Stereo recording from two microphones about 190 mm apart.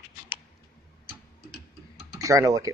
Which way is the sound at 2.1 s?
15° right (ahead or behind).